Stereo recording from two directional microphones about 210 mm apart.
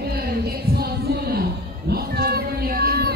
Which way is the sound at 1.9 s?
45° right (ahead or behind).